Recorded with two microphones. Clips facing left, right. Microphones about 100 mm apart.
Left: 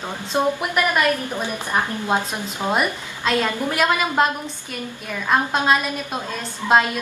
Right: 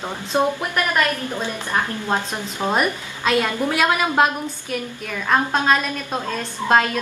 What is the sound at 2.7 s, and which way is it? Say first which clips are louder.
A woman's voice: right 1 dB; 5° right (ahead or behind).